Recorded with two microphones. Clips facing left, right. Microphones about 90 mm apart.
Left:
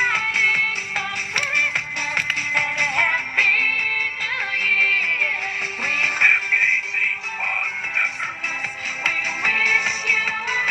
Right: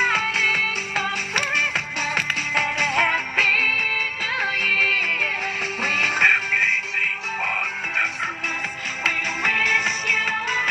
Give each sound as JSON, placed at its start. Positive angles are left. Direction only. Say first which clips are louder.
{"t": 0.0, "sound": "music", "louder": "even", "side_deg": -80}
{"t": 2.1, "sound": "music", "louder": "left 1 dB", "side_deg": -75}
{"t": 9.1, "sound": "music", "louder": "even", "side_deg": -50}